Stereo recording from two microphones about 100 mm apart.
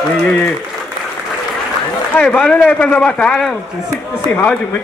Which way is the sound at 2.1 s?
10° left (ahead or behind).